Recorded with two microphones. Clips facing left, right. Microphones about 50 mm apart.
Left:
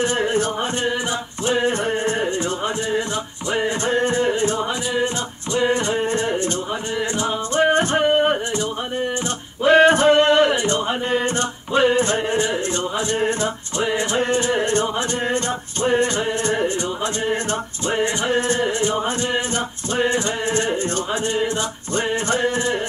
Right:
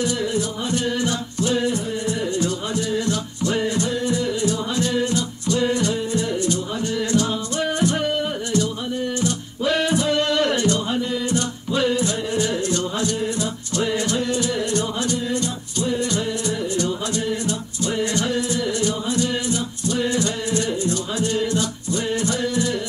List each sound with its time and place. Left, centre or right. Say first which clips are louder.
0.0 s music: left 3 dB; left
0.8 s a capella: even; left
1.9 s music: left 3 dB; left
4.7 s music: right 1 dB; left
7.0 s music: right 2 dB; left
9.8 s a sound: left 7 dB; left
10.5 s music: left 1 dB; left
11.1 s music: left 3 dB; left
18.5 s a capella: left 3 dB; left
21.3 s music: even; left